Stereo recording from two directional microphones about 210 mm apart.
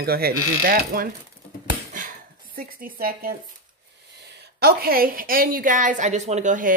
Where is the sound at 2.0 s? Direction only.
40° right (ahead or behind).